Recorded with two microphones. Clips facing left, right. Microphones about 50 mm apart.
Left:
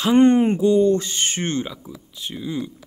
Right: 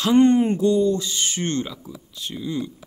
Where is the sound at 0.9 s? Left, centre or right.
Left.